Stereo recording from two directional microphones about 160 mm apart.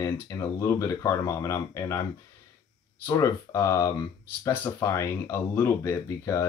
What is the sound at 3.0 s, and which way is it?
Speech, 20° left (ahead or behind).